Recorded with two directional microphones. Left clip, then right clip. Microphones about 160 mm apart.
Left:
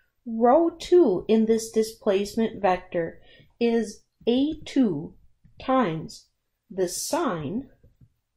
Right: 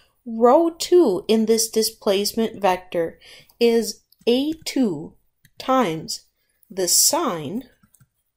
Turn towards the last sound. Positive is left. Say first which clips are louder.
# right 7 dB
turn(degrees=-15)  # may be behind; listen again after turning